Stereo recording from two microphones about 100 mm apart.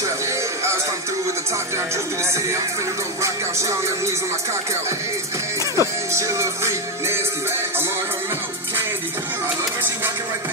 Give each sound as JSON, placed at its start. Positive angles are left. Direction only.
{"t": 3.2, "sound": "music", "side_deg": -30}
{"t": 5.8, "sound": "music", "side_deg": -30}